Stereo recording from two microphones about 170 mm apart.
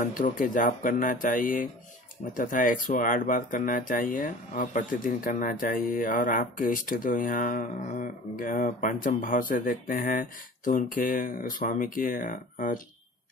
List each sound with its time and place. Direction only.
0.0 s speech: 55° left (ahead or behind)